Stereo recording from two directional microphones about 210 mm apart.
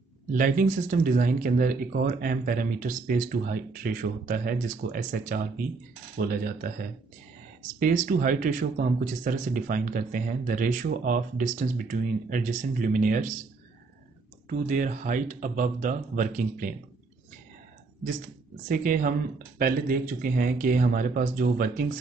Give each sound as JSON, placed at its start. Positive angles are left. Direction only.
{"t": 0.3, "sound": "speech", "side_deg": -40}
{"t": 7.8, "sound": "speech", "side_deg": -40}
{"t": 14.5, "sound": "speech", "side_deg": -35}
{"t": 18.7, "sound": "speech", "side_deg": -40}